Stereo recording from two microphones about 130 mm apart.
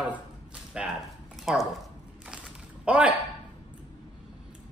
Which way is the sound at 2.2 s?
10° right (ahead or behind).